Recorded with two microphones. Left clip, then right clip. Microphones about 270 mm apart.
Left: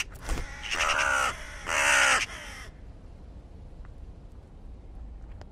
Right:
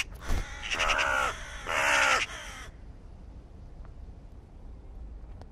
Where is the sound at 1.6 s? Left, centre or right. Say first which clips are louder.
Left 2 dB; left.